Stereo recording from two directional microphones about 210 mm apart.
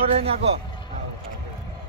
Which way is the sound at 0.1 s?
30° right (ahead or behind).